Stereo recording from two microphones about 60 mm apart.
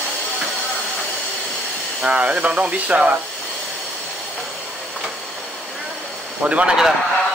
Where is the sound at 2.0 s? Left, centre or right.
Centre.